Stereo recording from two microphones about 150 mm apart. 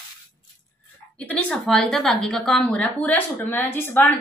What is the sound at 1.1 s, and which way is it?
A woman's voice, 10° left (ahead or behind).